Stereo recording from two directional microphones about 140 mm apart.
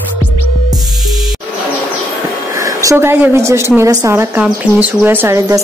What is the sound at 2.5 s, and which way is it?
Speech, 20° right (ahead or behind).